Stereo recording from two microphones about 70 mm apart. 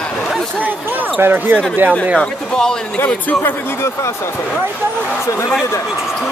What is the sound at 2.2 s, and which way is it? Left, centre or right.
Speech, centre.